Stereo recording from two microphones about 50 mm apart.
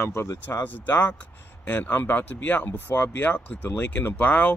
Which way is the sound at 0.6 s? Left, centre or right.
Left.